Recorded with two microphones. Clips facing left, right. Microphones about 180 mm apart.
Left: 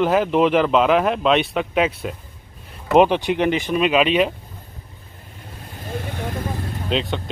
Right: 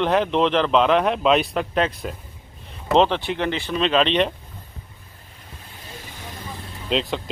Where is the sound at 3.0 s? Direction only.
15° left (ahead or behind).